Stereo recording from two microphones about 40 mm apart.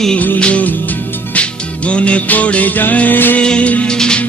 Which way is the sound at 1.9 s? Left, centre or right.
Left.